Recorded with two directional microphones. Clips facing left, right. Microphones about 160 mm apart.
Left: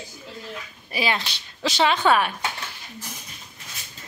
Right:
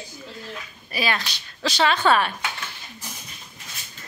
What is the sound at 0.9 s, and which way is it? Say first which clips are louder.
Speech: left 1 dB; 20° left (ahead or behind).